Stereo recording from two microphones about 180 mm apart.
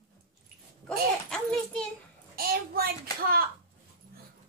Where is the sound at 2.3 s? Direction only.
55° right (ahead or behind).